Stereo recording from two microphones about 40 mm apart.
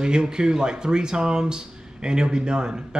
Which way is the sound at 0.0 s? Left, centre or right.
Centre.